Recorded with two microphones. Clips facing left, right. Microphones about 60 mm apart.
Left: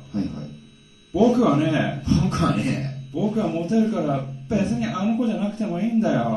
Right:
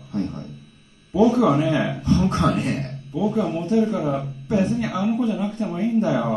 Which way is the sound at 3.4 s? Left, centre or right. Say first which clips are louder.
Even; right.